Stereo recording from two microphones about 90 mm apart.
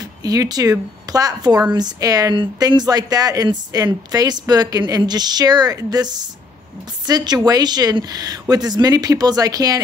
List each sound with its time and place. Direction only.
0.0 s speech: 40° right (ahead or behind)